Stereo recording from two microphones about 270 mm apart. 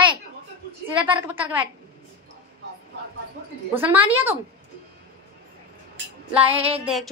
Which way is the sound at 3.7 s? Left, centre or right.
Centre.